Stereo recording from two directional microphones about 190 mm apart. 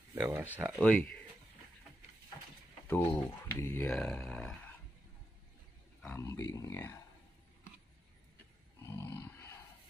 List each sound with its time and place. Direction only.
0.1 s speech: 10° right (ahead or behind)
0.7 s speech: 5° left (ahead or behind)
2.9 s speech: 10° left (ahead or behind)
6.0 s speech: 15° left (ahead or behind)
8.8 s roar: 15° left (ahead or behind)